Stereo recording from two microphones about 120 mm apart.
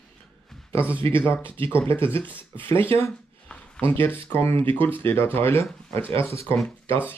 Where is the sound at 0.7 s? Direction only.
20° left (ahead or behind).